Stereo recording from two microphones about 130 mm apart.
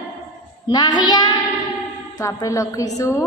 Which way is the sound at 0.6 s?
35° left (ahead or behind).